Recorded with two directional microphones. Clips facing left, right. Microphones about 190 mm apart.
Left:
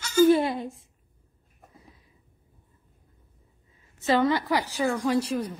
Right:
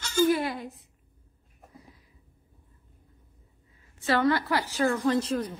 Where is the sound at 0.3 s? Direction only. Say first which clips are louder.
Left 5 dB; 25° left (ahead or behind).